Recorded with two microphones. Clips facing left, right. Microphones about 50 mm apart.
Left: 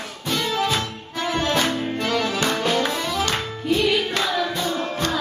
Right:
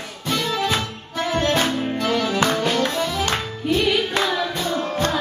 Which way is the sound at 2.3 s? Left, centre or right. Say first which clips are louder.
Right 3 dB; right.